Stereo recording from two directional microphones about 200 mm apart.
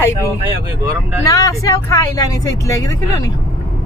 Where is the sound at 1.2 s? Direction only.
15° left (ahead or behind).